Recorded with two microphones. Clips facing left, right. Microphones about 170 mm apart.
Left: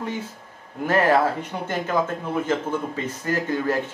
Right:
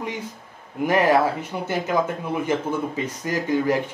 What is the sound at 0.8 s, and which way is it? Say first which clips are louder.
Speech: right 1 dB; 10° right (ahead or behind).